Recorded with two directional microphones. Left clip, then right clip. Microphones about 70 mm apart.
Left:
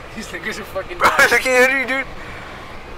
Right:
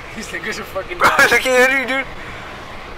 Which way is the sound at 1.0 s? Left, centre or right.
Centre.